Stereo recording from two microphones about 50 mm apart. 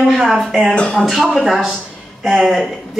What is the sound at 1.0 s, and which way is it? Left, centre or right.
Speech, centre.